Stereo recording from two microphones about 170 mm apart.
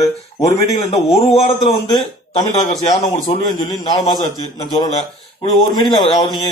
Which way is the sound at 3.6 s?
25° left (ahead or behind).